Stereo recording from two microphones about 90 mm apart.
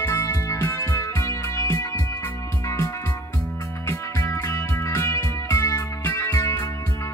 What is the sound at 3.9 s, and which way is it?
Music, 30° left (ahead or behind).